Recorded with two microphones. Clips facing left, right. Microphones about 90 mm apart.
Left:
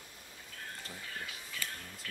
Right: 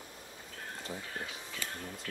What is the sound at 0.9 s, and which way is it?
Speech, 20° right (ahead or behind).